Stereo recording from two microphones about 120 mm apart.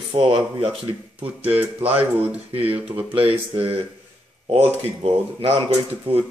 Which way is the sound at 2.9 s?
15° right (ahead or behind).